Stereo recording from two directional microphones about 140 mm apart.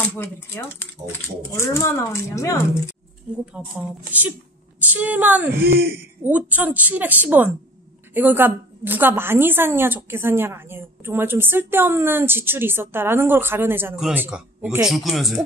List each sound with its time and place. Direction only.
0.1 s speech: 15° left (ahead or behind)
3.6 s a woman's voice: 10° right (ahead or behind)
5.6 s speech: 90° right
6.2 s a woman's voice: 10° right (ahead or behind)